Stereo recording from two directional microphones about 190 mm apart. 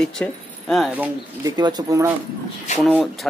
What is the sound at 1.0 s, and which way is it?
Speech, 20° right (ahead or behind).